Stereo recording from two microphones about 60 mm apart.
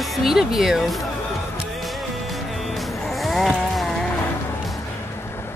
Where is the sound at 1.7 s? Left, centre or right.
Centre.